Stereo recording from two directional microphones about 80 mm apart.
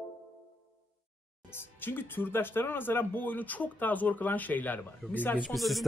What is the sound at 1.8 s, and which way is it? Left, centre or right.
Speech, left.